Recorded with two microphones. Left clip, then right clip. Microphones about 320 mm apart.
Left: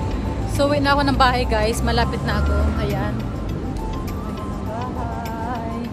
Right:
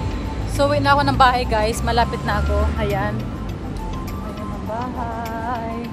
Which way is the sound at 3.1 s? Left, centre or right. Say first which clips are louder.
Left 1 dB; centre.